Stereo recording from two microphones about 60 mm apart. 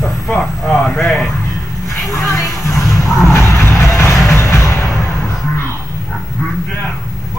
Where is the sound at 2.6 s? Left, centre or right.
Left.